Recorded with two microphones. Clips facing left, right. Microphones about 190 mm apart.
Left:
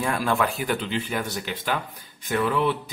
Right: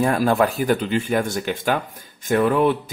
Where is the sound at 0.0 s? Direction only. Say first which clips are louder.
Right 6 dB; 40° right (ahead or behind).